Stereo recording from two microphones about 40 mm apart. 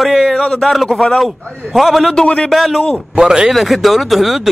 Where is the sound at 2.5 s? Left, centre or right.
Centre.